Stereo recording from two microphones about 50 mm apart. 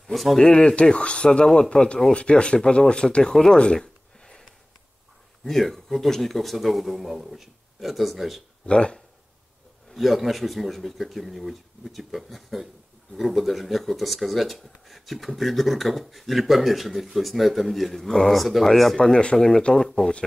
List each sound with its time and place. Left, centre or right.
0.0 s speech: centre
0.4 s speech: centre
8.6 s speech: centre
9.9 s speech: centre
18.9 s speech: centre